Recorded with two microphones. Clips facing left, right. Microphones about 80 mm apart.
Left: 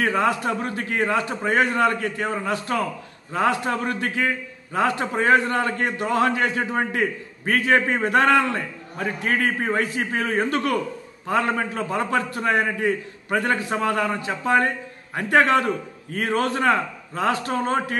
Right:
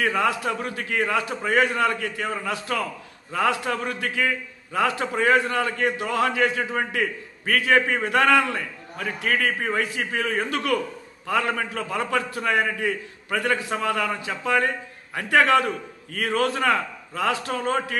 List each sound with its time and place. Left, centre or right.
0.0 s a man's voice: left